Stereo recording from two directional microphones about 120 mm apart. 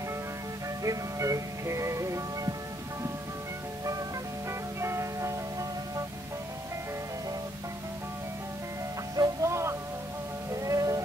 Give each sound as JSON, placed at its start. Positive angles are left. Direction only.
{"t": 0.8, "sound": "music", "side_deg": -25}
{"t": 4.5, "sound": "music", "side_deg": -25}
{"t": 9.1, "sound": "music", "side_deg": -30}